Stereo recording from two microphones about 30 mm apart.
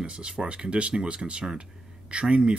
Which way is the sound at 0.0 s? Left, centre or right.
Right.